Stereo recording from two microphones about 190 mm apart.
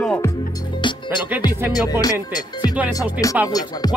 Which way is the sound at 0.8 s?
25° left (ahead or behind).